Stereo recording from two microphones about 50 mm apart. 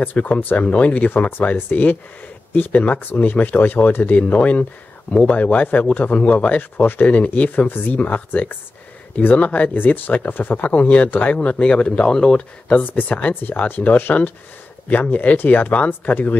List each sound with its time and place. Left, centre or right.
0.0 s a man's voice: left; by 12.7 s centre
12.7 s a man's voice: left